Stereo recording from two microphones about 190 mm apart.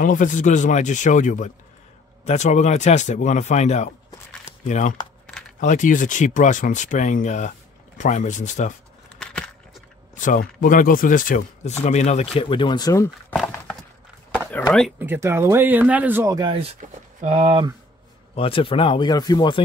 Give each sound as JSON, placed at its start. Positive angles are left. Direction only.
{"t": 0.0, "sound": "speech", "side_deg": 45}
{"t": 9.2, "sound": "a sound", "side_deg": 5}
{"t": 10.1, "sound": "speech", "side_deg": 45}
{"t": 15.0, "sound": "speech", "side_deg": -10}
{"t": 18.3, "sound": "speech", "side_deg": 30}